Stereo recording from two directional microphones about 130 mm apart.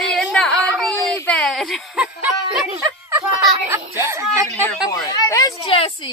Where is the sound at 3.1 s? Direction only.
20° right (ahead or behind).